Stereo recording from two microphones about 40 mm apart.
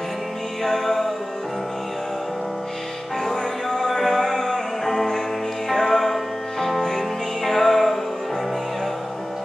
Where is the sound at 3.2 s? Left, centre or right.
Centre.